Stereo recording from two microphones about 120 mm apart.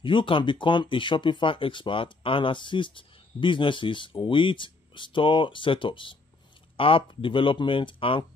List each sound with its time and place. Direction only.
0.0 s speech: 45° left (ahead or behind)